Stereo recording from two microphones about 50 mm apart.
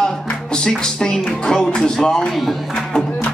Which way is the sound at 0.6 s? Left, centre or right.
Centre.